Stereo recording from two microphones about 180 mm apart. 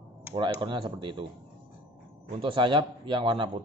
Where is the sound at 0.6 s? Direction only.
25° right (ahead or behind).